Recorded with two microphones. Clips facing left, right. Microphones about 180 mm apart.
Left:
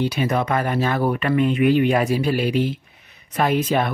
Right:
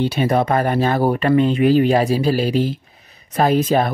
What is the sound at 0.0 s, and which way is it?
Speech, 30° right (ahead or behind).